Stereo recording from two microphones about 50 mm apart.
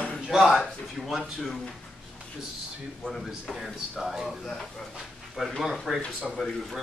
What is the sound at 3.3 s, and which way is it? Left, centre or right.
A man's voice, centre.